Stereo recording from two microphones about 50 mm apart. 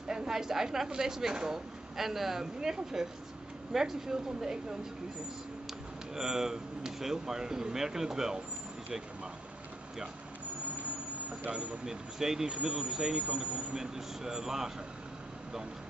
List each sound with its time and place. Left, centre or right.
0.1 s speech: centre
6.1 s speech: centre
11.5 s speech: centre